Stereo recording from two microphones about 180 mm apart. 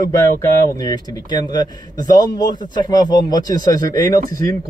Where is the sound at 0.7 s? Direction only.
20° left (ahead or behind).